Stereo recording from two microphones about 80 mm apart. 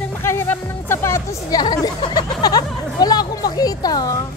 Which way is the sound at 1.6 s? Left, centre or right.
Left.